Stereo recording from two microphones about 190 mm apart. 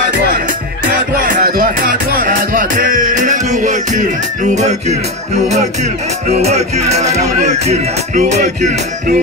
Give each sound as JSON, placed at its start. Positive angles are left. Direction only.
{"t": 1.1, "sound": "music", "side_deg": -50}
{"t": 6.3, "sound": "music", "side_deg": -35}